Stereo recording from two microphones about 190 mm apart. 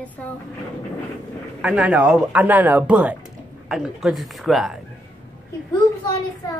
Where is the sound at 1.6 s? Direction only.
5° right (ahead or behind).